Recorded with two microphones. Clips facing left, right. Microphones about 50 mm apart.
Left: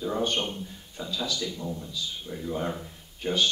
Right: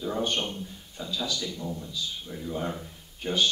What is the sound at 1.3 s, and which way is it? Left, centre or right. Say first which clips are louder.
Speech: left 1 dB; centre.